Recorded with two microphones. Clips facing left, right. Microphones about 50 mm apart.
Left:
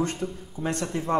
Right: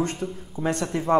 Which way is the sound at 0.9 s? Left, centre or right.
Centre.